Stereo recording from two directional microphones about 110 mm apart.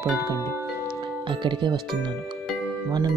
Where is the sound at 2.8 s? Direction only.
40° right (ahead or behind).